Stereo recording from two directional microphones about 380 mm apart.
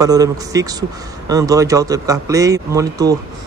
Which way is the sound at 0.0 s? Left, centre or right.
Centre.